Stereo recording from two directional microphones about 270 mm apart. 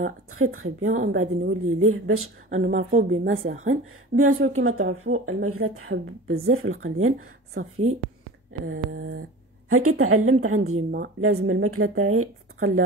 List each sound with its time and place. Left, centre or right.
0.3 s speech: right
2.5 s a woman's voice: right
3.0 s speech: right